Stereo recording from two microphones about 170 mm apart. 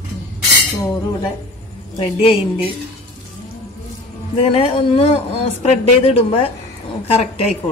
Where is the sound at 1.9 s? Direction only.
30° left (ahead or behind).